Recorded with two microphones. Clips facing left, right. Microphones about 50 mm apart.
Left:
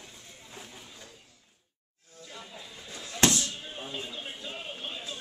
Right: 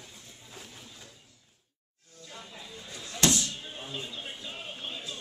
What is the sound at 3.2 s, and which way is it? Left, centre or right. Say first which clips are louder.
Music: left 1 dB; left.